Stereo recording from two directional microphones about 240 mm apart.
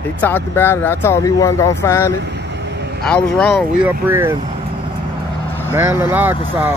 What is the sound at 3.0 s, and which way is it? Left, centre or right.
Speech, centre.